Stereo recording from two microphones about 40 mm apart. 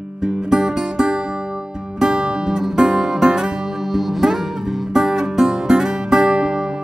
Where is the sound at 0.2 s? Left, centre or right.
Centre.